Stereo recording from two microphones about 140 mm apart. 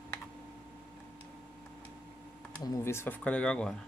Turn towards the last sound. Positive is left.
turn(degrees=5)  # may be behind; listen again after turning